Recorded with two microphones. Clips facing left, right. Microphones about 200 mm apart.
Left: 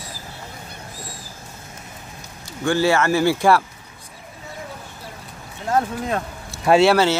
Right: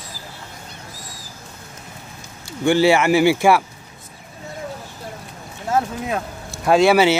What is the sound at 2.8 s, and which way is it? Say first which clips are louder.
Speech: right 2 dB; 15° right (ahead or behind).